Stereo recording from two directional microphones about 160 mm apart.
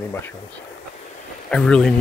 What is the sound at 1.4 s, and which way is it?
Speech, 5° left (ahead or behind).